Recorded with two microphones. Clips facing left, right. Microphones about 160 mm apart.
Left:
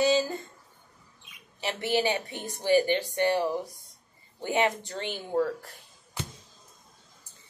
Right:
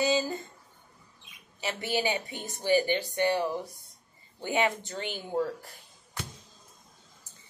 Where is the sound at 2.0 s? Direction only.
15° right (ahead or behind).